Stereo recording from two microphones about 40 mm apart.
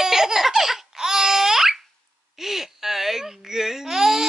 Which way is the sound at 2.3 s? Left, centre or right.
Centre.